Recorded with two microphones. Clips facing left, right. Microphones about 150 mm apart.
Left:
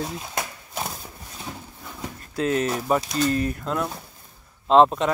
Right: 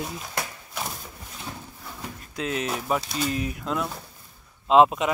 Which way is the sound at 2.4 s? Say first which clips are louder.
Left 5 dB; centre (ahead or behind).